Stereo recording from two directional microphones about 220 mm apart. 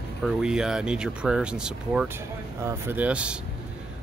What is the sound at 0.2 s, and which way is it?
Speech, 5° right (ahead or behind).